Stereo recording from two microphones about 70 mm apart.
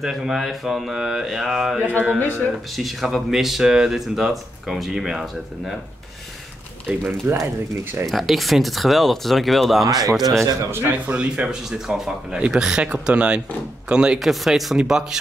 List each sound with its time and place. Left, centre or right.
0.0 s speech: centre
2.1 s speech: left
2.7 s speech: centre
7.0 s a man's voice: right
8.1 s speech: centre
9.8 s speech: right
10.2 s a man's voice: right
10.7 s a man's voice: right
11.1 s speech: centre
14.2 s speech: centre